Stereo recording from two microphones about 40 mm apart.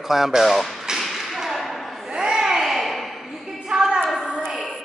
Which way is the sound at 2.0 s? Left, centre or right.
Centre.